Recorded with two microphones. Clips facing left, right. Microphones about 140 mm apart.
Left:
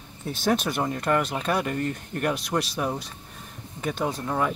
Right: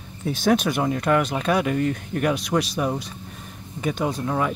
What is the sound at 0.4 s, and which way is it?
Speech, centre (ahead or behind).